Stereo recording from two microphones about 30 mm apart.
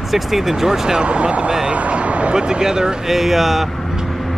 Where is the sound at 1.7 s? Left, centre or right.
Right.